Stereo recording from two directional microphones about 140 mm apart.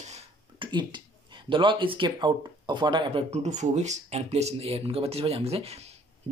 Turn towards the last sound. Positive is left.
turn(degrees=-50)  # may be behind; listen again after turning